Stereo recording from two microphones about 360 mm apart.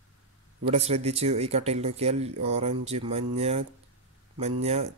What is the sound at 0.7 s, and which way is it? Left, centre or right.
Speech, centre.